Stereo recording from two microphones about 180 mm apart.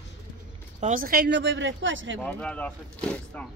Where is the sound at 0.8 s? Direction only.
50° right (ahead or behind); by 2.2 s 90° right.